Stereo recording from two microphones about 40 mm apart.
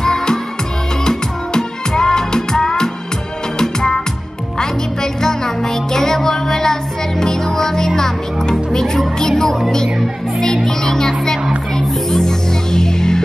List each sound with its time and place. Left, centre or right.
0.0 s music: centre
10.4 s music: centre